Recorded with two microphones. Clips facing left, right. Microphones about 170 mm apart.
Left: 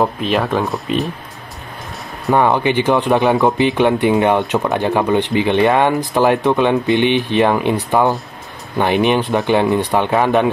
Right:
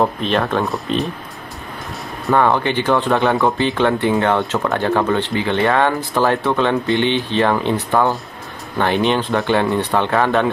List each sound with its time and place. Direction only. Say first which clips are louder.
0.0 s speech: left 1 dB; 5° left (ahead or behind)
2.3 s speech: left 2 dB; 15° left (ahead or behind)